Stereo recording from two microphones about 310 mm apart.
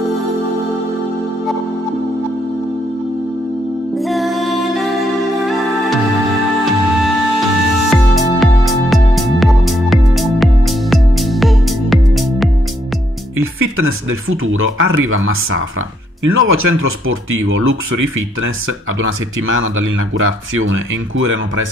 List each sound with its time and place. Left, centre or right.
4.0 s music: centre
7.9 s music: centre
13.4 s speech: right
18.9 s speech: right